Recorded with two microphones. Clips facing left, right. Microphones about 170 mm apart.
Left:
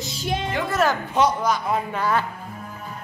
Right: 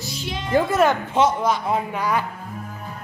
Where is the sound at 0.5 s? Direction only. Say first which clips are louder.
Right 7 dB; 40° right (ahead or behind).